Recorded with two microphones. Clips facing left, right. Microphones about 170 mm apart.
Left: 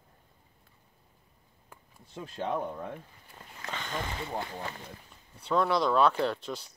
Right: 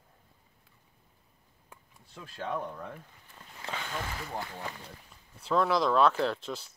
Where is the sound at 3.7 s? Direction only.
5° right (ahead or behind).